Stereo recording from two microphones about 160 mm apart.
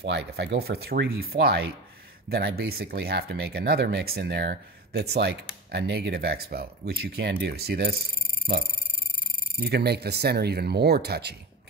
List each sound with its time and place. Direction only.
0.0 s speech: 90° right
9.6 s speech: 90° right